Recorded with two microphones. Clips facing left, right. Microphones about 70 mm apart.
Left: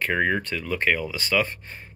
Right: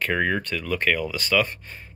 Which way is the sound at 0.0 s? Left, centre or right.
Centre.